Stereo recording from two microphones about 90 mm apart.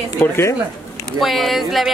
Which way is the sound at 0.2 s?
30° left (ahead or behind).